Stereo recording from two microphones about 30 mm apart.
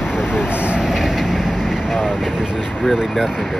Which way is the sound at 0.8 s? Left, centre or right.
Centre.